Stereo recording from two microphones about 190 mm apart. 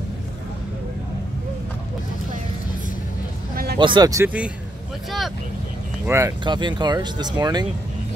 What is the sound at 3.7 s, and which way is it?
Speech, 25° right (ahead or behind).